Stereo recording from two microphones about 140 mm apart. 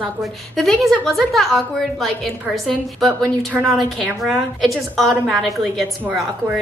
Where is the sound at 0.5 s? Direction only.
5° left (ahead or behind).